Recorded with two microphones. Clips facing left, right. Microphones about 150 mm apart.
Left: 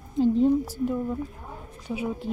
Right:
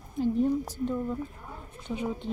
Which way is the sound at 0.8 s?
10° left (ahead or behind).